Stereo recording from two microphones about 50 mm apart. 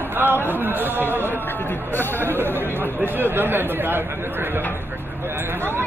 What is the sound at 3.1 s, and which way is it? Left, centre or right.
Speech, right.